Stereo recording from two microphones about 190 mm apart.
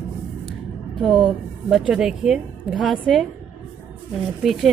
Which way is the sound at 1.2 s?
Centre (ahead or behind).